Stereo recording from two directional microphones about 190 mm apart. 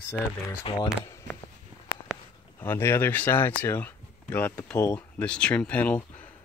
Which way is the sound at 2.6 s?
10° left (ahead or behind).